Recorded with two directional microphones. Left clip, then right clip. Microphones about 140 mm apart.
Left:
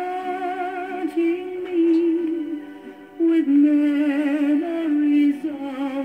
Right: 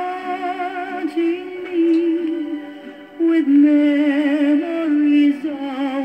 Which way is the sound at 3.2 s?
25° right (ahead or behind).